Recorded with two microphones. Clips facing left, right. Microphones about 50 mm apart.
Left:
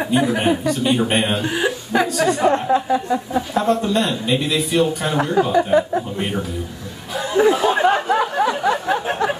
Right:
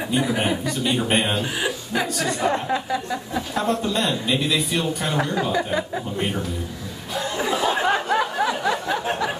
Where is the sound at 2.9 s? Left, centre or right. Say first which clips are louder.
Left 6 dB; left.